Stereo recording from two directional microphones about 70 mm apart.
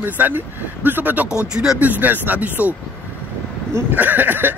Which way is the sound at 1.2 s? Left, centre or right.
Left.